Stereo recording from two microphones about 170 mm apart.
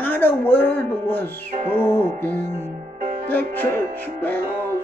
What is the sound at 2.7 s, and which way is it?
Music, 50° right (ahead or behind).